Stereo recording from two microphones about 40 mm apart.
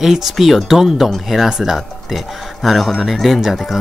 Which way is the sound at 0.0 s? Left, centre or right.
Centre.